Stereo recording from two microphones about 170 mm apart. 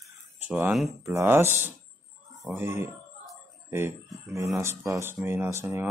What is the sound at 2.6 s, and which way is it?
Speech, 15° right (ahead or behind).